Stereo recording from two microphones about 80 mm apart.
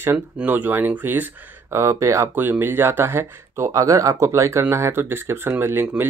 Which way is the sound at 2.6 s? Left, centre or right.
Right.